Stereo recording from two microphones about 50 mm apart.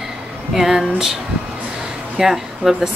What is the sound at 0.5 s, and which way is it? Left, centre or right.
Speech, centre.